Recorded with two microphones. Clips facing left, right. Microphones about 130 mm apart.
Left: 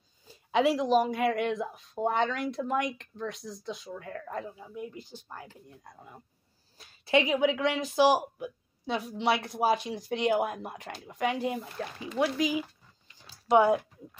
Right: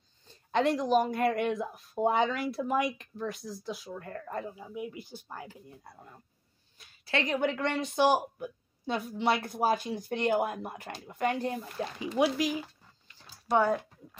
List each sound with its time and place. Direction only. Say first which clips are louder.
0.2 s speech: left 2 dB; 5° left (ahead or behind)
7.1 s a woman's voice: left 6 dB; 15° left (ahead or behind)
7.3 s speech: left 3 dB; centre (ahead or behind)
11.8 s speech: right 2 dB; 15° right (ahead or behind)
13.5 s speech: left 4 dB; 15° left (ahead or behind)